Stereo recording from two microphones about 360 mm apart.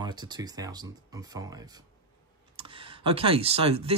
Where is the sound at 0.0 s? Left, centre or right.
Centre.